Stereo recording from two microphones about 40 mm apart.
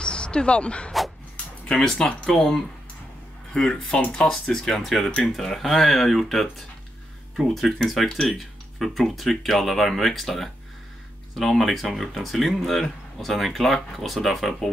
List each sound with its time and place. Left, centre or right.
0.0 s speech: left
2.0 s speech: left
2.3 s speech: centre